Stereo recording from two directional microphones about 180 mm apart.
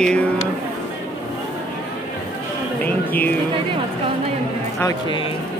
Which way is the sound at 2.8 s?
10° left (ahead or behind).